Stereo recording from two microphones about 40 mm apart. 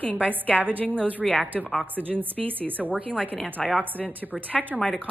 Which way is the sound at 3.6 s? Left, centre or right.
Centre.